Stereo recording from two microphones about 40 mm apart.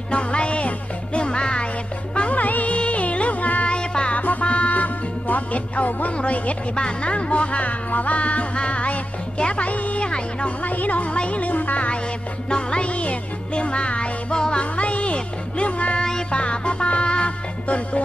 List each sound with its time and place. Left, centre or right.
0.1 s music: left
2.1 s music: left
3.6 s music: left
4.1 s music: left
10.0 s speech: left
10.6 s music: left
12.4 s music: left
16.0 s music: centre
16.3 s music: left